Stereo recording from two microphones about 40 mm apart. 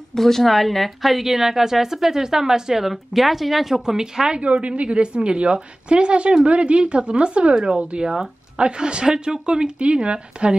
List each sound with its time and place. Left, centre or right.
0.1 s a woman's voice: centre
4.4 s speech: right